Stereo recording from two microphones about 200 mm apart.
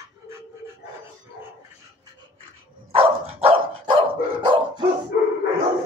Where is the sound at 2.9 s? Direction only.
30° right (ahead or behind).